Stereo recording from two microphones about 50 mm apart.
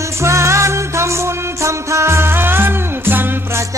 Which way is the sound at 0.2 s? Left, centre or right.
Right.